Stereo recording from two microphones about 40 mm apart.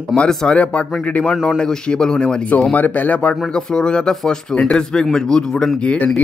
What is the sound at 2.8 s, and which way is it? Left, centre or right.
Speech, left.